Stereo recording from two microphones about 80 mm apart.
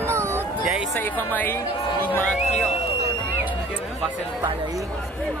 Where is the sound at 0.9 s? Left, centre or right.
Left.